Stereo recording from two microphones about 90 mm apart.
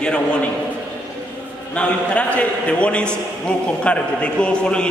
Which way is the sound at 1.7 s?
15° left (ahead or behind).